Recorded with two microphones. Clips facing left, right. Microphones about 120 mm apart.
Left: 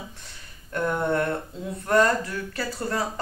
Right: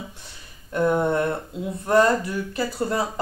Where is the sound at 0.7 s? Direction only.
15° right (ahead or behind).